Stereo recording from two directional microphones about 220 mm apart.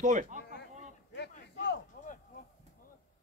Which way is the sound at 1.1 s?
50° left (ahead or behind).